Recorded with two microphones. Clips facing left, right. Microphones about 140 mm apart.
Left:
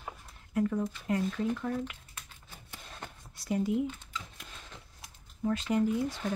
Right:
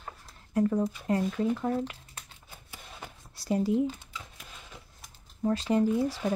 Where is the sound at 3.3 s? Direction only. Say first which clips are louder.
Right 3 dB; 35° right (ahead or behind).